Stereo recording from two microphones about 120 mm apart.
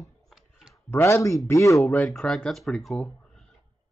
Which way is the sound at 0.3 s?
5° right (ahead or behind).